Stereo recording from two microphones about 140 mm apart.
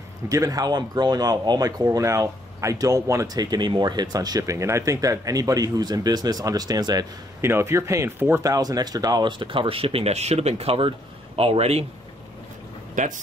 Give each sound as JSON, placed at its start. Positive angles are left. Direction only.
{"t": 0.3, "sound": "speech", "side_deg": -25}
{"t": 12.9, "sound": "speech", "side_deg": -65}